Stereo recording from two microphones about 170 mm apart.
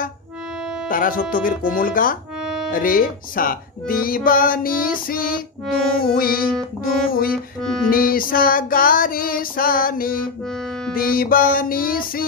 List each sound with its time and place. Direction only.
0.8 s speech: 55° left (ahead or behind)